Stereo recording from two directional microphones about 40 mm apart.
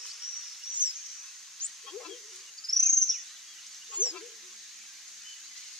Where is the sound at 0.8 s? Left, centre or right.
Right.